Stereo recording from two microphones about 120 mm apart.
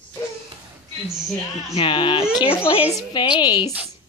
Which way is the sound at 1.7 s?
45° left (ahead or behind).